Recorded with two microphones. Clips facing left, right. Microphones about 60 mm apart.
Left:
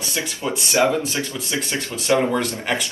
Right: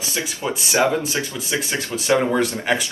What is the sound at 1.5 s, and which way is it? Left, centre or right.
Speech, right.